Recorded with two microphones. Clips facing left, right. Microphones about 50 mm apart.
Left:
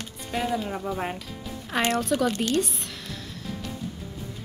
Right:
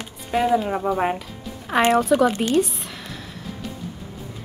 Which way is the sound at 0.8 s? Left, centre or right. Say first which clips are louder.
Right 8 dB; right.